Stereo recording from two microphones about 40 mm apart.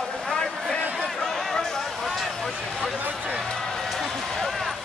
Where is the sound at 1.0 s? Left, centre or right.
Centre.